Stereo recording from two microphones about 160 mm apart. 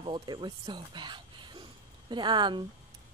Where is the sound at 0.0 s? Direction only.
30° right (ahead or behind).